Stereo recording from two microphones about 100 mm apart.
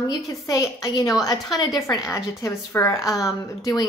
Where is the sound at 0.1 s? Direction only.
35° left (ahead or behind).